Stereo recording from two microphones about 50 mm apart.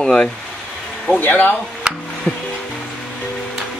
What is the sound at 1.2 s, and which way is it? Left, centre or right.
Speech, left.